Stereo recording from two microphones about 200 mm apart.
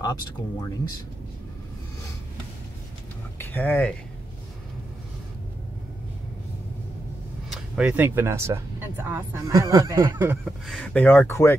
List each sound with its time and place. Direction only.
0.0 s speech: 20° left (ahead or behind)
3.3 s speech: 10° left (ahead or behind)
7.4 s speech: 5° right (ahead or behind)
10.4 s speech: centre (ahead or behind)